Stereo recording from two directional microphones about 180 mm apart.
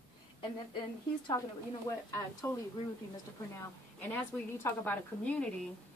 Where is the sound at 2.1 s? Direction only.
15° left (ahead or behind).